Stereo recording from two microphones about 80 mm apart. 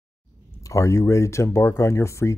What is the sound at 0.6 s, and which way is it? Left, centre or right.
Speech, left.